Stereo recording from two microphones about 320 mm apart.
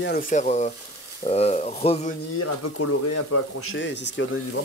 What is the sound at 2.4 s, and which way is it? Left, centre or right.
Speech, left.